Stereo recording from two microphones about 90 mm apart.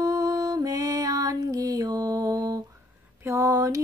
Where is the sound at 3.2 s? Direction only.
35° right (ahead or behind).